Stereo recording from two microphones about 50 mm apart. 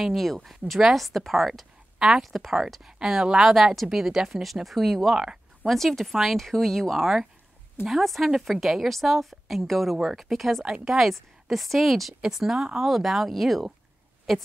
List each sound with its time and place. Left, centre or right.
0.0 s a woman's voice: centre
2.0 s a woman's voice: centre
2.2 s a woman's voice: centre
5.7 s a woman's voice: centre